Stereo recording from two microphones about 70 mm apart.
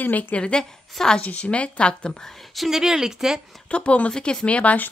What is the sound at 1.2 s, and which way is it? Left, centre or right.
Speech, centre.